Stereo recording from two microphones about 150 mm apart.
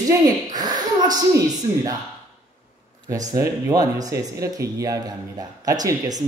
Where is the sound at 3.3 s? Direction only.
20° right (ahead or behind).